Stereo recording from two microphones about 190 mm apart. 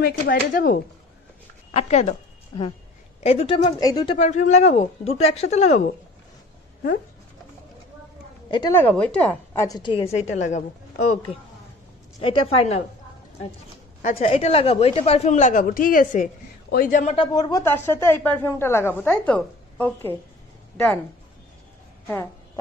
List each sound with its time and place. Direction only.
0.0 s speech: 50° left (ahead or behind)
1.7 s a woman's voice: 35° left (ahead or behind)
4.2 s a woman's voice: 40° left (ahead or behind)
8.5 s a woman's voice: 20° left (ahead or behind)
8.7 s speech: 10° left (ahead or behind); by 10.0 s 25° left (ahead or behind)
10.1 s a woman's voice: 40° left (ahead or behind)
14.0 s a woman's voice: 30° left (ahead or behind)
17.2 s speech: 20° left (ahead or behind)
22.0 s speech: 10° left (ahead or behind)